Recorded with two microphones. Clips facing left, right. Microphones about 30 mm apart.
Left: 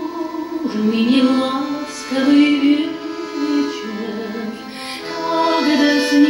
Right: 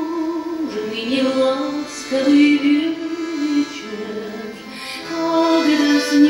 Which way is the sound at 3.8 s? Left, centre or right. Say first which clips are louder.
Left 3 dB; left.